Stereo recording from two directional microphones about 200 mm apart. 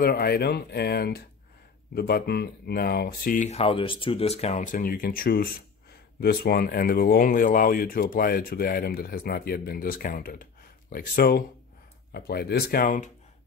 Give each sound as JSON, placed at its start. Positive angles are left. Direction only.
{"t": 0.0, "sound": "speech", "side_deg": 50}